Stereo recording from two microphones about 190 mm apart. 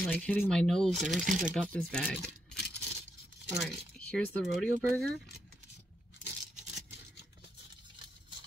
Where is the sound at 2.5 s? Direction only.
60° left (ahead or behind).